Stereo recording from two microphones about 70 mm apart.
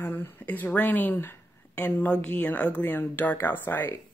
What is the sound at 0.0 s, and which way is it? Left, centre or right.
Speech, left.